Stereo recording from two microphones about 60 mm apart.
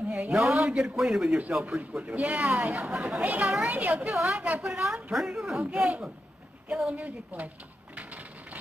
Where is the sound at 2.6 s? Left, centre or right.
Right.